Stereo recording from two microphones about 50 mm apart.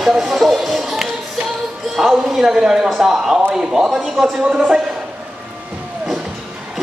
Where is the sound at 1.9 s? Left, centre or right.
Centre.